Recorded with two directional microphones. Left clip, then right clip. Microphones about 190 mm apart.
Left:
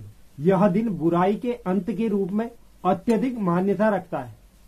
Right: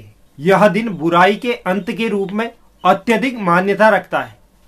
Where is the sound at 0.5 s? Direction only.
5° right (ahead or behind).